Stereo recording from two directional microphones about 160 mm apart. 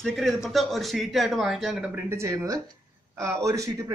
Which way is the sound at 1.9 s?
15° right (ahead or behind).